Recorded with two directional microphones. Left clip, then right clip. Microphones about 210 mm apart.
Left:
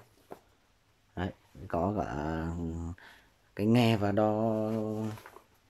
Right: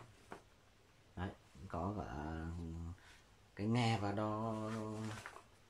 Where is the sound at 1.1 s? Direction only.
50° left (ahead or behind).